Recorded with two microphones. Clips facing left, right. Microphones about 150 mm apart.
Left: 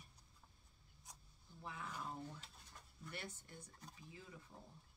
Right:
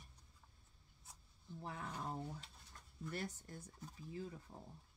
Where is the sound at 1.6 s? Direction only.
40° right (ahead or behind).